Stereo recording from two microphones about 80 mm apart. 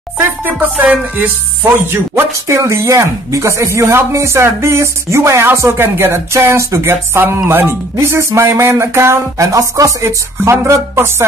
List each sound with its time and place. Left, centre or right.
0.2 s speech: right
10.0 s speech: right